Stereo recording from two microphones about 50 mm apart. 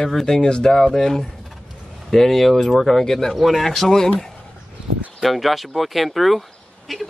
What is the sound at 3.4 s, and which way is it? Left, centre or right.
Speech, centre.